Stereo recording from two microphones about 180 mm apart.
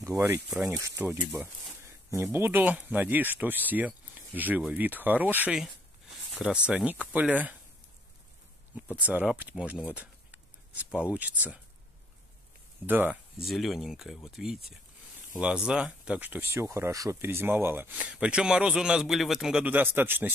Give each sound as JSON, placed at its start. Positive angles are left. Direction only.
{"t": 0.1, "sound": "speech", "side_deg": -10}
{"t": 8.9, "sound": "speech", "side_deg": -10}
{"t": 12.8, "sound": "speech", "side_deg": -10}